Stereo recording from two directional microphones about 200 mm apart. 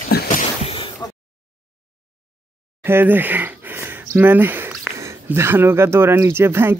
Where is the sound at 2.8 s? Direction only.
10° right (ahead or behind).